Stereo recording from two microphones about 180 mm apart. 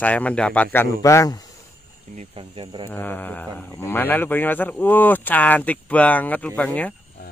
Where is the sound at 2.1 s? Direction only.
30° right (ahead or behind).